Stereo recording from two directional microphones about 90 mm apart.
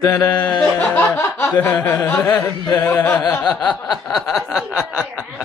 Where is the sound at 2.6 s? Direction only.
20° left (ahead or behind).